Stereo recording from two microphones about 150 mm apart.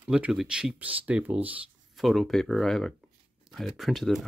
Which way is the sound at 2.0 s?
Centre (ahead or behind).